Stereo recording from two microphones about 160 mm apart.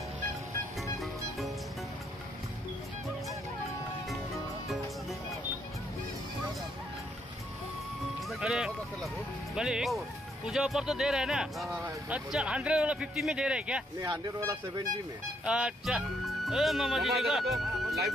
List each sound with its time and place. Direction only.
8.3 s clip-clop: 5° right (ahead or behind)
9.6 s speech: 5° right (ahead or behind)
11.7 s speech: 15° right (ahead or behind)
13.9 s speech: 20° right (ahead or behind)
15.4 s speech: 5° right (ahead or behind)